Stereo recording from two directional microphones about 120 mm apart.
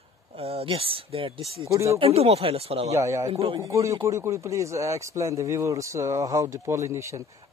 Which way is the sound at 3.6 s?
25° right (ahead or behind).